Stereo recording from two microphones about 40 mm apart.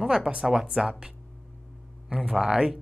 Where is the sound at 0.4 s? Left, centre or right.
Centre.